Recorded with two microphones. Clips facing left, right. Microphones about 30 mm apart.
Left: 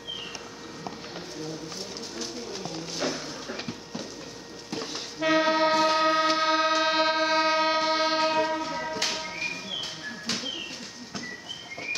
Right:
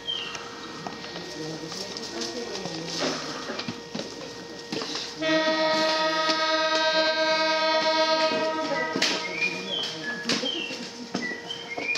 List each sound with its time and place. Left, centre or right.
2.7 s music: right
5.2 s music: centre
6.3 s a sound: centre
6.8 s train: centre